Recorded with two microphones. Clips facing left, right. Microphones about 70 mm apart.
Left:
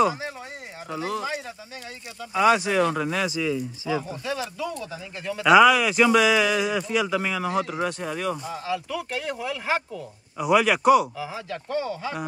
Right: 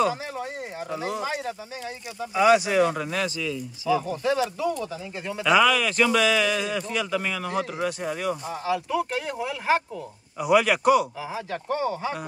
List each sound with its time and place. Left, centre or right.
0.9 s speech: centre
1.2 s speech: right
2.3 s speech: centre
3.3 s speech: left
4.2 s speech: right
5.4 s speech: centre
8.5 s speech: right
10.4 s speech: centre
11.1 s speech: right